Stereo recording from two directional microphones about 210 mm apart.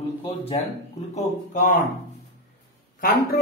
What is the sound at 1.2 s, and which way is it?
Speech, 35° left (ahead or behind).